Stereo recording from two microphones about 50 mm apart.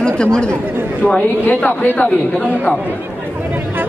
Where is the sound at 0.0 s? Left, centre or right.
Centre.